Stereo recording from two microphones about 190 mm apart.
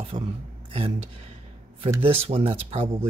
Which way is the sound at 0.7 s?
30° right (ahead or behind).